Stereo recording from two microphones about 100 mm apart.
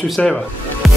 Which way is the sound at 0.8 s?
Centre (ahead or behind).